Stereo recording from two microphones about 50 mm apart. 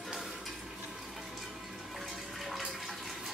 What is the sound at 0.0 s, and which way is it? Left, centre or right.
Frying, centre.